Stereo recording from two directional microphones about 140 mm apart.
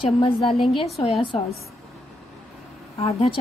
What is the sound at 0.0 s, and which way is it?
Speech, 40° left (ahead or behind).